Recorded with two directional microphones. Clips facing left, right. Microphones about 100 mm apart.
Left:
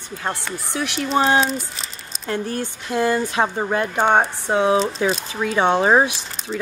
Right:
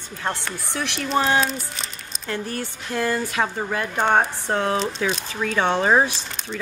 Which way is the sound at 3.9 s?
10° left (ahead or behind).